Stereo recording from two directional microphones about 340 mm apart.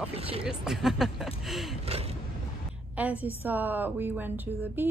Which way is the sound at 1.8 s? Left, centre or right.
Centre.